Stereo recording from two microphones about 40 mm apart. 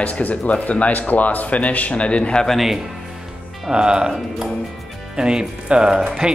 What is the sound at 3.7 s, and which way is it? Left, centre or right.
Speech, right.